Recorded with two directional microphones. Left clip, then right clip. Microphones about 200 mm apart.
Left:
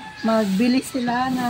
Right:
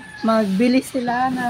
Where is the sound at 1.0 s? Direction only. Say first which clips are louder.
Right 2 dB; 10° right (ahead or behind).